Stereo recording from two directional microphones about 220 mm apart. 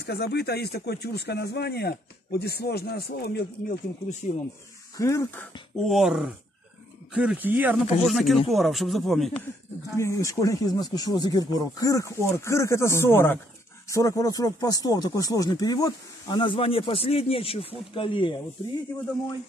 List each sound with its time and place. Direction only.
0.0 s speech: 50° left (ahead or behind)
4.2 s speech: 35° left (ahead or behind)
4.9 s speech: 15° left (ahead or behind)
9.9 s speech: 15° left (ahead or behind)